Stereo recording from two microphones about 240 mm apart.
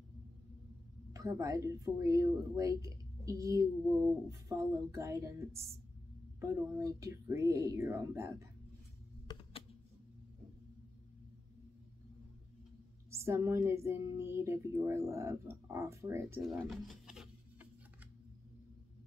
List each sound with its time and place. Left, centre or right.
1.1 s speech: centre
9.3 s computer keyboard: left
13.1 s speech: centre